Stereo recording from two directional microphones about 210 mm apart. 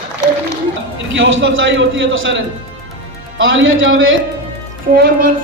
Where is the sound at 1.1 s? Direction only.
60° right (ahead or behind).